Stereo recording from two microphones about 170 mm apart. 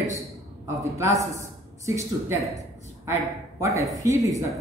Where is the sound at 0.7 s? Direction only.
20° right (ahead or behind).